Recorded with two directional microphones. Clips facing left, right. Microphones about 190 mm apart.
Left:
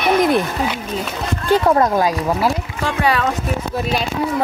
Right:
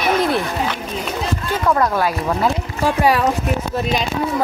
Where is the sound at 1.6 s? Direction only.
30° left (ahead or behind).